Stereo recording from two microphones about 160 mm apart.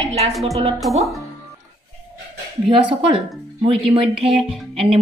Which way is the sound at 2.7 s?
35° right (ahead or behind).